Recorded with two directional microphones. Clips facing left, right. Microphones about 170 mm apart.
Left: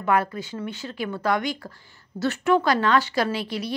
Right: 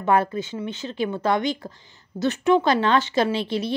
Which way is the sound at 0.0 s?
25° right (ahead or behind).